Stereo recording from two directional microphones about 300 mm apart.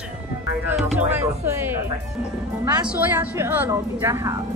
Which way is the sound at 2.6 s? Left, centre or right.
Centre.